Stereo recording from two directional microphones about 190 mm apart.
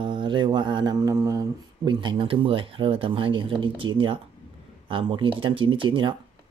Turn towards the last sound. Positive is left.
turn(degrees=-25)  # may be behind; listen again after turning